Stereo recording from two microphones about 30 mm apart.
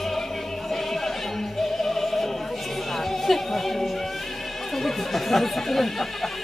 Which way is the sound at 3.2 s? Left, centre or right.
Centre.